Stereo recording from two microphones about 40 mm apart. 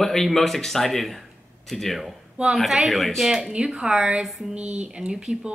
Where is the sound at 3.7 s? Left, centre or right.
Right.